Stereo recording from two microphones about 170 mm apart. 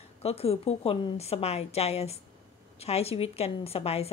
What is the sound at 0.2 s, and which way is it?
Speech, 35° left (ahead or behind).